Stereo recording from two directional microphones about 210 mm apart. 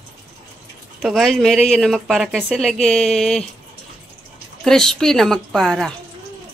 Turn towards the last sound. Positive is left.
turn(degrees=0)  # may be behind; listen again after turning